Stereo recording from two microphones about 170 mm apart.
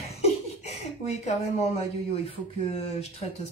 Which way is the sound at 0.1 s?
40° left (ahead or behind).